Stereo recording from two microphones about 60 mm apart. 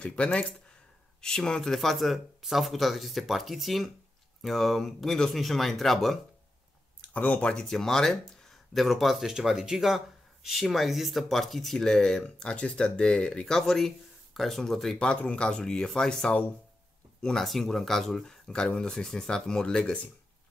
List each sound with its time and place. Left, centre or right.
0.0 s speech: centre
1.2 s speech: centre
7.0 s speech: left; by 15.0 s centre
15.0 s speech: centre